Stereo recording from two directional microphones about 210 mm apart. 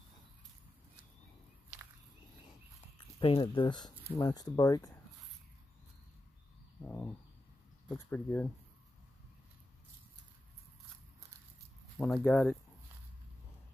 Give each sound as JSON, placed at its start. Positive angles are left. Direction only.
{"t": 3.2, "sound": "speech", "side_deg": 25}
{"t": 6.8, "sound": "a sound", "side_deg": 10}
{"t": 8.1, "sound": "speech", "side_deg": 10}
{"t": 12.0, "sound": "speech", "side_deg": 10}